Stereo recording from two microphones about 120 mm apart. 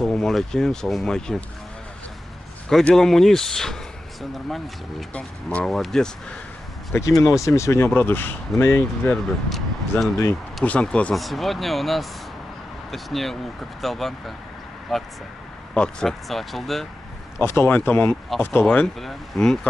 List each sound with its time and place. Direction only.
0.1 s speech: 5° left (ahead or behind)
2.7 s speech: 5° left (ahead or behind)
5.1 s speech: 10° left (ahead or behind)
6.9 s speech: 25° left (ahead or behind)
9.1 s speech: centre (ahead or behind)
17.4 s speech: 20° left (ahead or behind)